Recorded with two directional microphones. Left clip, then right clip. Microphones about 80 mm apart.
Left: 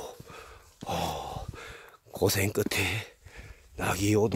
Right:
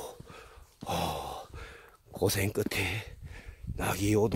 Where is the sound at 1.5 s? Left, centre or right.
Left.